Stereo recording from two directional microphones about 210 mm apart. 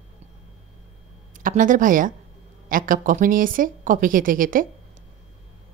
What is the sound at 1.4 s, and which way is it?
Speech, 40° right (ahead or behind).